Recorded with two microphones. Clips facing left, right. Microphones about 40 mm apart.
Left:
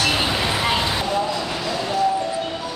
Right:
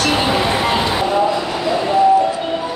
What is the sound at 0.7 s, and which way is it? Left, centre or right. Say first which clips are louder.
Vehicle: right 6 dB; centre.